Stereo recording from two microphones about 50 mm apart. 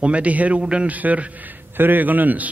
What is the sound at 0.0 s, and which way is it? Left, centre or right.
A man's voice, right.